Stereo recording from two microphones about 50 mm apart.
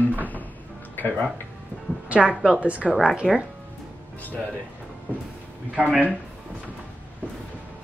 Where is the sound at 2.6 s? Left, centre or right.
Right.